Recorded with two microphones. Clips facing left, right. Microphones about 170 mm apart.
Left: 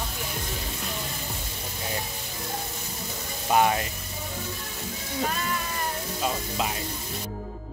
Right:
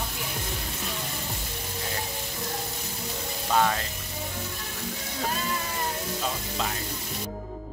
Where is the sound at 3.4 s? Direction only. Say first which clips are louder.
Left 3 dB; 15° left (ahead or behind).